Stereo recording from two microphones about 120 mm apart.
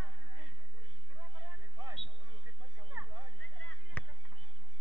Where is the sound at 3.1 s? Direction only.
40° right (ahead or behind).